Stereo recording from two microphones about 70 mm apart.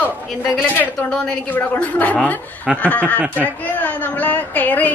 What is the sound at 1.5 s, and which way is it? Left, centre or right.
Speech, left.